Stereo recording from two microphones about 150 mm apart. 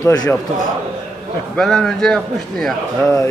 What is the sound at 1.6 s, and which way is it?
A man's voice, centre (ahead or behind).